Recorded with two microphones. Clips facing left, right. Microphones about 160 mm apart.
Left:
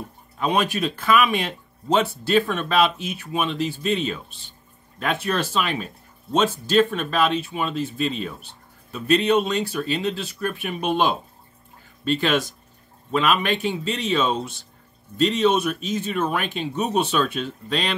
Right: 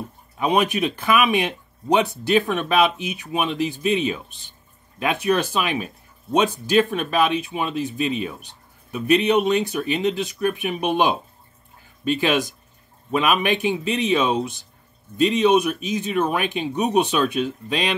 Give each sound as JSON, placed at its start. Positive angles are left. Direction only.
{"t": 0.4, "sound": "speech", "side_deg": -20}